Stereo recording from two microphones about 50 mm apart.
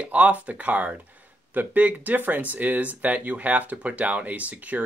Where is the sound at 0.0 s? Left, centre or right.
Right.